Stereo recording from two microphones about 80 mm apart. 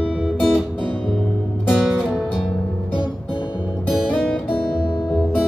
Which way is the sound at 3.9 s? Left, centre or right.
Centre.